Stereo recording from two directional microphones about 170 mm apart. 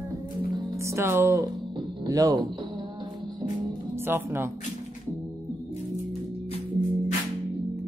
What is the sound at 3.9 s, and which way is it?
Music, 15° right (ahead or behind).